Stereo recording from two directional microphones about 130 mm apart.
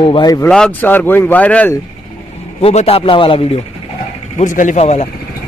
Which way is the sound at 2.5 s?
50° left (ahead or behind).